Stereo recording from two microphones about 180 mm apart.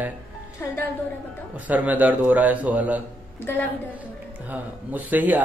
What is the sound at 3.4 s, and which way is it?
Speech, 10° left (ahead or behind).